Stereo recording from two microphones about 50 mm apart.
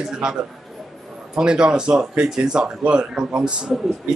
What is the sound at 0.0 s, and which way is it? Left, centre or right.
Speech, centre.